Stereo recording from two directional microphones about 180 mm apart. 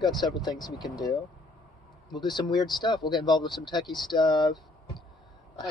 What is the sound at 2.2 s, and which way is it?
Speech, 25° left (ahead or behind).